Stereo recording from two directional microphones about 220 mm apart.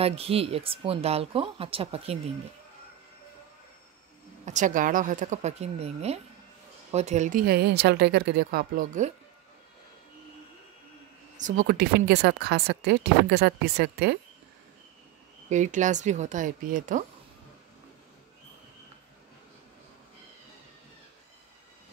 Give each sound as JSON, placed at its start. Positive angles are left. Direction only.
{"t": 0.0, "sound": "speech", "side_deg": -25}
{"t": 4.5, "sound": "a woman's voice", "side_deg": -35}
{"t": 11.3, "sound": "speech", "side_deg": -35}
{"t": 15.5, "sound": "a woman's voice", "side_deg": -35}